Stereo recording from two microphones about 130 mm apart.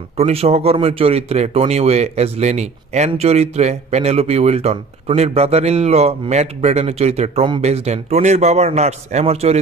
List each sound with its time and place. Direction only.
0.2 s speech: 50° right (ahead or behind)